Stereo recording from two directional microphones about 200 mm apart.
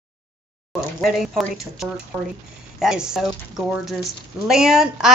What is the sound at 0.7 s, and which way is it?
Speech, centre (ahead or behind).